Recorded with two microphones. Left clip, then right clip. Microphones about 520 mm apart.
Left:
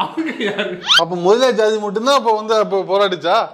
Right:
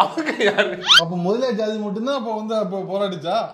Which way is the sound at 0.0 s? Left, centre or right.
Right.